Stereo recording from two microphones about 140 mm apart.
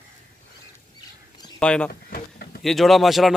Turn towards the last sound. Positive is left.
turn(degrees=0)  # may be behind; listen again after turning